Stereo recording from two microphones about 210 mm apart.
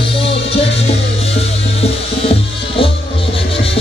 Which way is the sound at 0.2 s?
25° left (ahead or behind).